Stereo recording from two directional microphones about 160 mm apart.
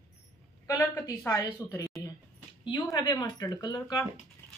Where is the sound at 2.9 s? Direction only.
25° left (ahead or behind).